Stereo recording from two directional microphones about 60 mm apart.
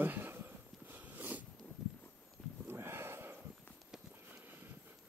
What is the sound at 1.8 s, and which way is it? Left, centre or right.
Horse, centre.